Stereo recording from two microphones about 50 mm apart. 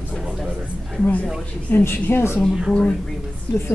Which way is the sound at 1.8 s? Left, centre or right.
Left.